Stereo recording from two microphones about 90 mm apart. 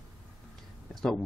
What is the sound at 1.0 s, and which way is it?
Speech, 5° left (ahead or behind).